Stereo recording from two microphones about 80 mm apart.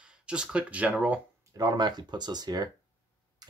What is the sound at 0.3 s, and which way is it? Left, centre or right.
Speech, centre.